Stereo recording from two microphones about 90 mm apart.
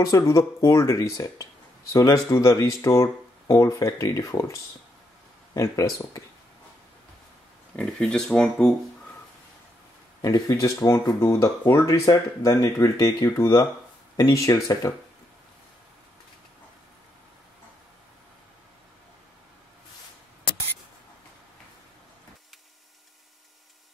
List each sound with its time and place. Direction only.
0.0 s speech: 40° left (ahead or behind)
5.6 s speech: 40° left (ahead or behind)
7.7 s speech: 5° left (ahead or behind)
10.2 s speech: 40° left (ahead or behind)